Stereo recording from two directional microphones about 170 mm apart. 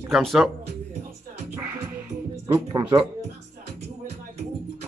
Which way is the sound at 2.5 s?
20° right (ahead or behind).